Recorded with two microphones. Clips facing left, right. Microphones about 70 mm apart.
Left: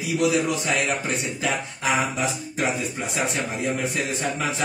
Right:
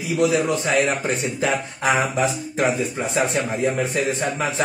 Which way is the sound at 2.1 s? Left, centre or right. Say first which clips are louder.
Right 5 dB; right.